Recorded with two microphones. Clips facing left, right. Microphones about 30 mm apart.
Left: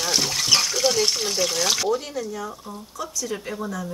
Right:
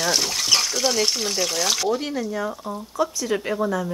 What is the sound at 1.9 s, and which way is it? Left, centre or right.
Speech, centre.